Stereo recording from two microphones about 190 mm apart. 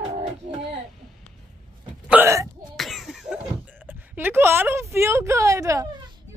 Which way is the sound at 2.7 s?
Centre (ahead or behind).